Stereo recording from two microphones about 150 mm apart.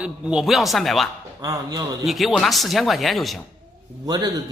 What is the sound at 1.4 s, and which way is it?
Speech, 25° right (ahead or behind).